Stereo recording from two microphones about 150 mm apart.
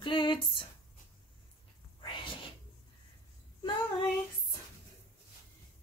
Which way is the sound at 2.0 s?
35° left (ahead or behind).